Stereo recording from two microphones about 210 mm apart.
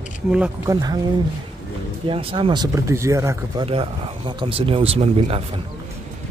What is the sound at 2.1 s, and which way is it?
Speech, 25° right (ahead or behind).